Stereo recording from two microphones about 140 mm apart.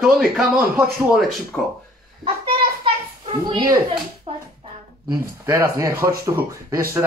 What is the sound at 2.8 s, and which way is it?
Children playing, 40° right (ahead or behind).